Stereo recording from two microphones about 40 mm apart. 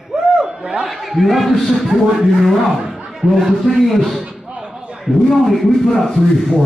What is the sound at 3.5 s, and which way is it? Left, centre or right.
Speech, centre.